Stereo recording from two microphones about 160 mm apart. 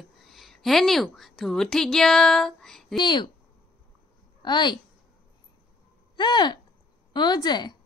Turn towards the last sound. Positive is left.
turn(degrees=25)  # may be behind; listen again after turning